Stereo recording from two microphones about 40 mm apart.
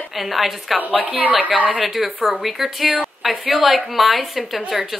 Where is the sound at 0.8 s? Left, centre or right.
Right.